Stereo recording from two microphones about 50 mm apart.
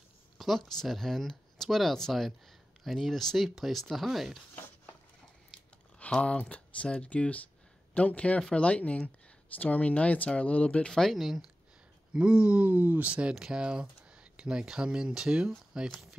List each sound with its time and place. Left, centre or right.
0.4 s a sound: centre
0.7 s speech: centre
3.4 s speech: centre
6.2 s speech: left
10.9 s speech: centre
11.1 s speech: centre
12.1 s speech: centre
12.6 s speech: right
13.3 s speech: centre